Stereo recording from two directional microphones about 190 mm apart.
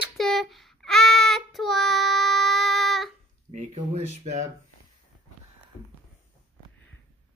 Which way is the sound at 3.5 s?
40° right (ahead or behind).